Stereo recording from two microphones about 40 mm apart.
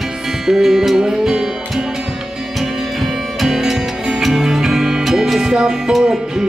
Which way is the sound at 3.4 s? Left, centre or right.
Centre.